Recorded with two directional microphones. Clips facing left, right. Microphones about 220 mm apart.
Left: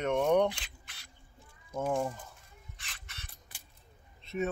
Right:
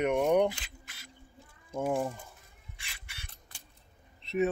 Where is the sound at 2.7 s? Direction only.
10° right (ahead or behind).